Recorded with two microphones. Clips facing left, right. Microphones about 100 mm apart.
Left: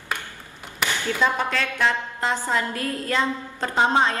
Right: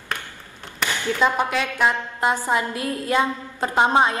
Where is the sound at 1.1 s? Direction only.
15° right (ahead or behind).